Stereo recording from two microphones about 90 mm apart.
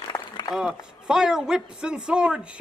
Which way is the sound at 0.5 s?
5° right (ahead or behind).